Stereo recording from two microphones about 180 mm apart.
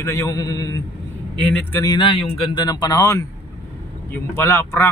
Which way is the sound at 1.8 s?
25° left (ahead or behind).